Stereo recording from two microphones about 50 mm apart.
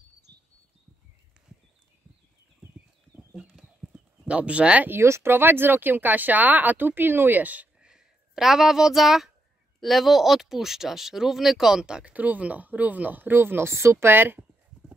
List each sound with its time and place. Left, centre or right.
3.9 s horse: right
5.0 s speech: right
5.3 s speech: right
8.4 s a child's voice: centre
12.1 s speech: right